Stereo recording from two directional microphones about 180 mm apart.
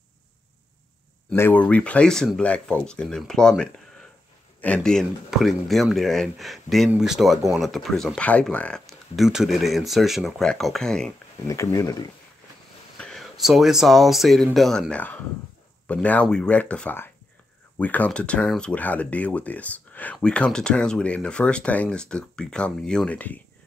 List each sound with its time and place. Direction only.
1.3 s speech: 10° left (ahead or behind)
11.4 s speech: 15° left (ahead or behind)
12.9 s speech: 5° left (ahead or behind)